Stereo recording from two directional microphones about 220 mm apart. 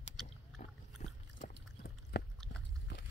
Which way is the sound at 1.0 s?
35° left (ahead or behind).